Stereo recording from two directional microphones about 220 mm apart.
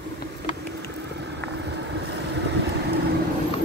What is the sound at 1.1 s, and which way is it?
Vehicle, 50° right (ahead or behind).